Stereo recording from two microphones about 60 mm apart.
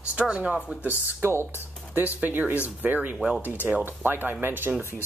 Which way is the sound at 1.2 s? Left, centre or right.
Right.